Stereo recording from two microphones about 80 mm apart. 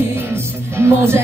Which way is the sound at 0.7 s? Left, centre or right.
Right.